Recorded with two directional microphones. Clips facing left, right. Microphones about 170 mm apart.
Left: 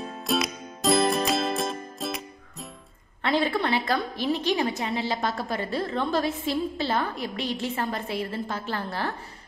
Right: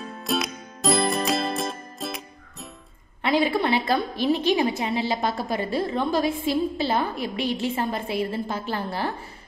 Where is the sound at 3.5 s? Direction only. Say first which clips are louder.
Right 3 dB; 15° right (ahead or behind).